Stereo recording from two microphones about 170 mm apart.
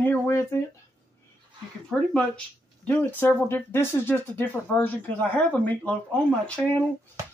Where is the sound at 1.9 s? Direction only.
5° left (ahead or behind).